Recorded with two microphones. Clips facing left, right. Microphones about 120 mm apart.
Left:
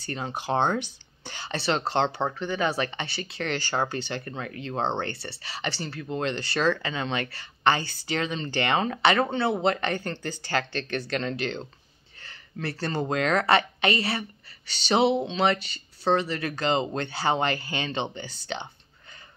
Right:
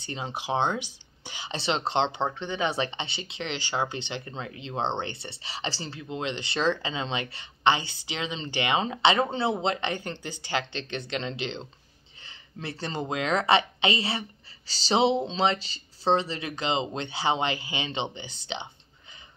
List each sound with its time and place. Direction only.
0.0 s speech: 20° right (ahead or behind)
12.2 s a sound: 20° right (ahead or behind)
13.1 s speech: 15° right (ahead or behind)